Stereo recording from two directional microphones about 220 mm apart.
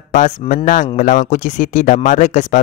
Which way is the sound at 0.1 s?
35° left (ahead or behind).